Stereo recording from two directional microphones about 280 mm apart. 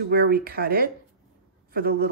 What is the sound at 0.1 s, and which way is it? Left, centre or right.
Speech, right.